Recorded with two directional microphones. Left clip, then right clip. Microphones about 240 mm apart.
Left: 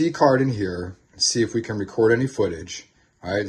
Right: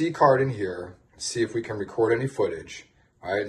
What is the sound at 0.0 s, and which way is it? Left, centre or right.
Speech, left.